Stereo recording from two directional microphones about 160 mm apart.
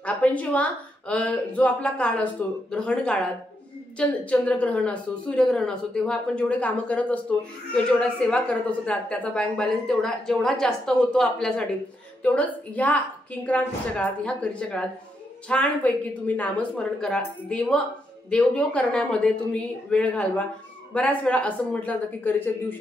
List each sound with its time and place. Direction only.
0.0 s a woman's voice: 10° left (ahead or behind)